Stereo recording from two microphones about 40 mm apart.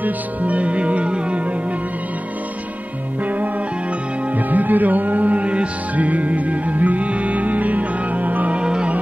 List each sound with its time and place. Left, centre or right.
0.0 s music: right
4.5 s music: right
8.5 s music: right